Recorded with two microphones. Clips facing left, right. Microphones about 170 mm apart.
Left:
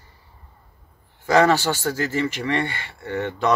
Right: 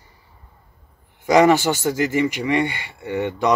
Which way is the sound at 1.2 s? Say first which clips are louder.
Right 3 dB; 15° right (ahead or behind).